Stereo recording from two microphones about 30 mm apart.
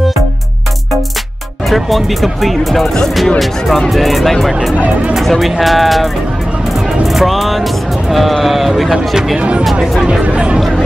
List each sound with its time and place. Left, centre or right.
1.7 s speech: centre
7.2 s speech: centre
8.9 s speech: centre